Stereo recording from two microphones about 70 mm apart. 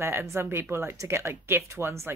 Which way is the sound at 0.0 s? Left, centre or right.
Right.